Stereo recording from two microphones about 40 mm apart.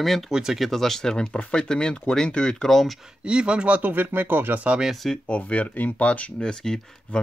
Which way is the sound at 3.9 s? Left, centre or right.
Right.